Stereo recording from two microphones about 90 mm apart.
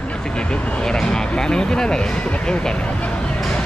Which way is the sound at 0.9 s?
10° left (ahead or behind).